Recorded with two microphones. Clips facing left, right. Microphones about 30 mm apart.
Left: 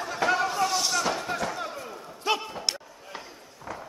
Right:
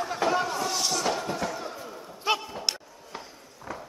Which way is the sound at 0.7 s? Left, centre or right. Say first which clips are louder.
Left 1 dB; centre.